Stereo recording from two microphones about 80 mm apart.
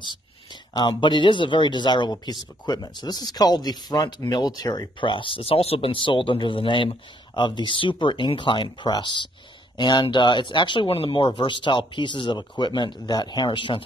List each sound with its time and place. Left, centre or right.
0.7 s speech: left
5.0 s speech: left
7.3 s speech: left